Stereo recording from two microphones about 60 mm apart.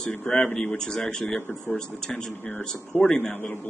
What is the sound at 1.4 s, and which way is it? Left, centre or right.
Speech, left.